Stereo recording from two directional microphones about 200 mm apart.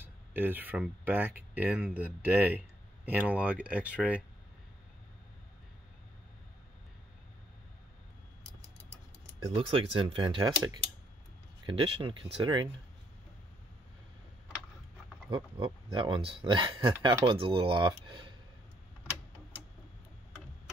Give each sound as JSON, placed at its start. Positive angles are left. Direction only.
{"t": 0.0, "sound": "speech", "side_deg": -10}
{"t": 9.5, "sound": "speech", "side_deg": -25}
{"t": 15.2, "sound": "speech", "side_deg": -20}